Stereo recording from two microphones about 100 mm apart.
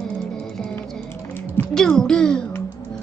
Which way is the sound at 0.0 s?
5° left (ahead or behind).